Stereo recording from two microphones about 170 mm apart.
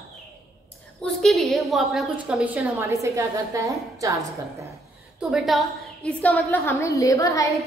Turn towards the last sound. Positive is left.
turn(degrees=20)  # may be behind; listen again after turning